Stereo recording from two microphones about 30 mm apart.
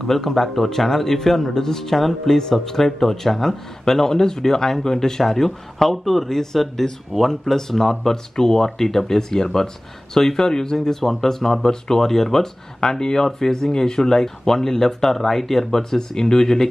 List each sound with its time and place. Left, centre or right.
0.0 s speech: centre